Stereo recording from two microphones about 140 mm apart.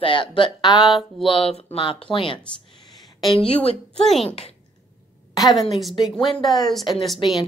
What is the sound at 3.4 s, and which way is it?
Speech, 45° left (ahead or behind).